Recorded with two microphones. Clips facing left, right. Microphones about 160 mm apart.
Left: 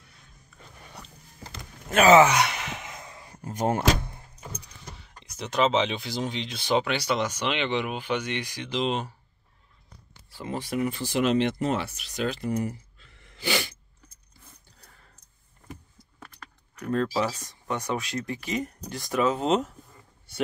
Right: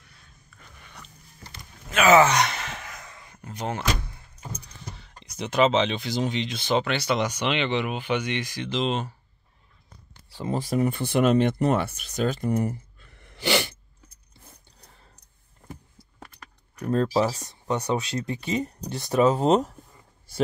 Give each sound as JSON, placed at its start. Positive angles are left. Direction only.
{"t": 0.6, "sound": "a sound", "side_deg": 35}
{"t": 2.2, "sound": "gasp", "side_deg": 10}
{"t": 2.9, "sound": "a sound", "side_deg": 25}
{"t": 3.4, "sound": "speech", "side_deg": 45}
{"t": 5.0, "sound": "speech", "side_deg": 5}
{"t": 8.3, "sound": "speech", "side_deg": 10}
{"t": 10.3, "sound": "speech", "side_deg": -35}
{"t": 10.9, "sound": "speech", "side_deg": -55}
{"t": 16.8, "sound": "speech", "side_deg": -30}
{"t": 17.6, "sound": "speech", "side_deg": -20}